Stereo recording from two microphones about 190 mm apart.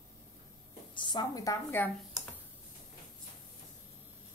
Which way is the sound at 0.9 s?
25° left (ahead or behind).